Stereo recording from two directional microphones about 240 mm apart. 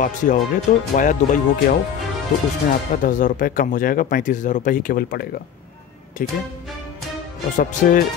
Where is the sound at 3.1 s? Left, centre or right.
Left.